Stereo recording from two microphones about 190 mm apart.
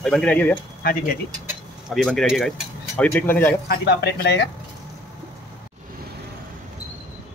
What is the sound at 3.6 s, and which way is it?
Speech, 55° left (ahead or behind).